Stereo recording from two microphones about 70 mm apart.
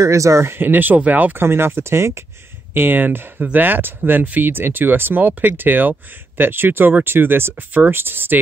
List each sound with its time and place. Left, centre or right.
0.0 s speech: right